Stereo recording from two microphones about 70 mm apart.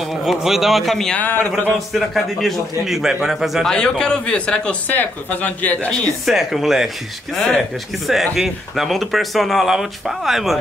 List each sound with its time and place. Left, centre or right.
0.2 s speech: centre
1.1 s speech: left
1.5 s speech: centre
3.6 s speech: centre
6.2 s speech: centre
7.3 s speech: centre
8.1 s speech: centre